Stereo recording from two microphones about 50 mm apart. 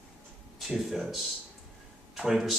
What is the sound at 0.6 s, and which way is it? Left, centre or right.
Speech, centre.